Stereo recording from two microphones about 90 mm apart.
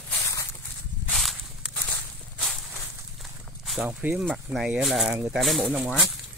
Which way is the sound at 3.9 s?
20° right (ahead or behind).